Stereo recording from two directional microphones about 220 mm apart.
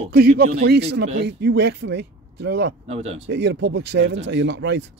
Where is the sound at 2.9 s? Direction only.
30° right (ahead or behind).